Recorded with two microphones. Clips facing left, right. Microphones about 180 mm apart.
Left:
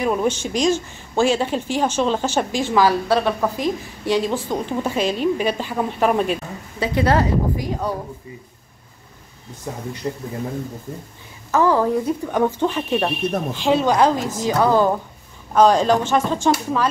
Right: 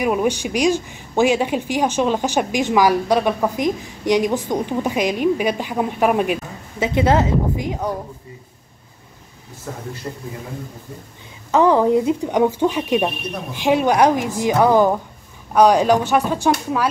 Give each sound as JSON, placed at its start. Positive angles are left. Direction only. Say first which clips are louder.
{"t": 0.0, "sound": "speech", "louder": "right 1 dB", "side_deg": -10}
{"t": 9.7, "sound": "speech", "louder": "left 3 dB", "side_deg": 15}
{"t": 11.5, "sound": "speech", "louder": "right 3 dB", "side_deg": -20}